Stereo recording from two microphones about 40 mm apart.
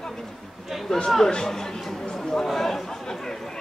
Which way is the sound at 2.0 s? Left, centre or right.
Centre.